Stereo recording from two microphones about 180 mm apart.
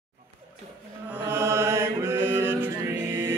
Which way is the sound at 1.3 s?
15° right (ahead or behind).